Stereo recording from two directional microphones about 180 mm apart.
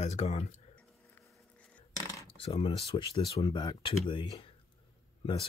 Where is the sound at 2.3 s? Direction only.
30° left (ahead or behind).